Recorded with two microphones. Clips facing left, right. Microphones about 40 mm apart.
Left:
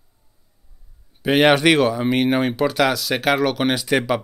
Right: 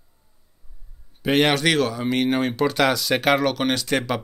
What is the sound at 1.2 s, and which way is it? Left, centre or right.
Speech, centre.